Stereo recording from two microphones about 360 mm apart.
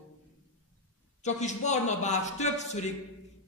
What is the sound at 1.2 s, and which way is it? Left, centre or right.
A man's voice, centre.